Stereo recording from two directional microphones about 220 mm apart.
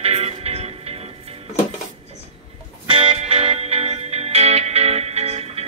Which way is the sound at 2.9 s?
25° right (ahead or behind).